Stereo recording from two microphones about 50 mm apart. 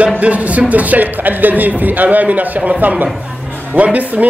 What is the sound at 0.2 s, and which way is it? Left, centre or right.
A man's voice, right.